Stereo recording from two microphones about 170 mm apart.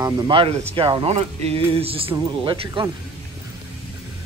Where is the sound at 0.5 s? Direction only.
35° right (ahead or behind).